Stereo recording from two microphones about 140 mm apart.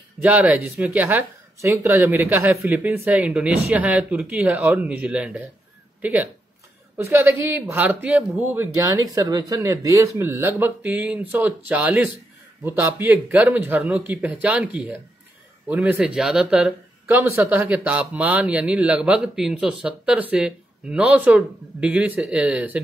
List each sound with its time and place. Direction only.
0.2 s speech: 10° right (ahead or behind)
7.0 s speech: 20° right (ahead or behind)